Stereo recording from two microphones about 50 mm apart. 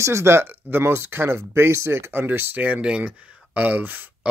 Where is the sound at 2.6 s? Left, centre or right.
Right.